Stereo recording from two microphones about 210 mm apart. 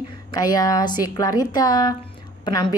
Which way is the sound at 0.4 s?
15° left (ahead or behind).